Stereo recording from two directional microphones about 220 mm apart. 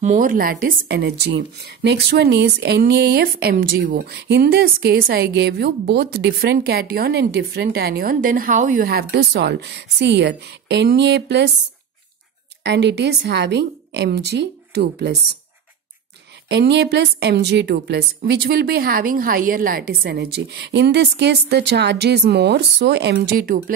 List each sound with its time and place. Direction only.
0.0 s a woman's voice: 35° right (ahead or behind)
12.6 s a woman's voice: 50° right (ahead or behind)
16.4 s a woman's voice: 50° right (ahead or behind)